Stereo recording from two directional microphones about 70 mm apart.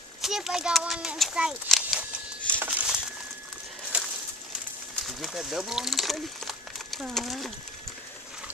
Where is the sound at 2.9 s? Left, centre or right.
Centre.